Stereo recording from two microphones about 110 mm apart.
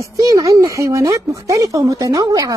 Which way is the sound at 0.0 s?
35° right (ahead or behind).